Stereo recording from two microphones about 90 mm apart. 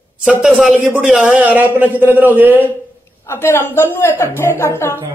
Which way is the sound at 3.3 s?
25° left (ahead or behind).